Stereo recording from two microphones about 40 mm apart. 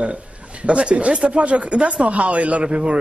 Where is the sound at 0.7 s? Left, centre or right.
Right.